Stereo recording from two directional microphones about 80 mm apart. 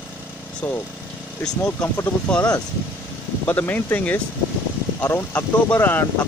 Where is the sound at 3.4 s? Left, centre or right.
Left.